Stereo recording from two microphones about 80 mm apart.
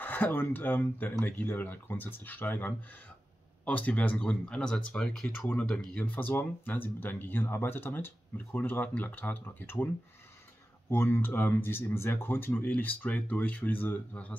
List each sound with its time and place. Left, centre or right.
0.0 s speech: left
10.9 s speech: left